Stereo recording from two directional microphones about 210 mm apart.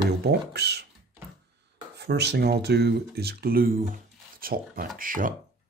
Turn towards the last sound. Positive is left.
turn(degrees=-40)  # may be behind; listen again after turning